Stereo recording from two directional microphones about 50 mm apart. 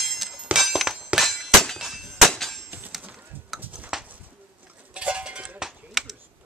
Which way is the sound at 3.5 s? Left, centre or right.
Centre.